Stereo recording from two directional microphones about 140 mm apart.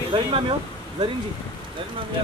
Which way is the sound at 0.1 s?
40° right (ahead or behind).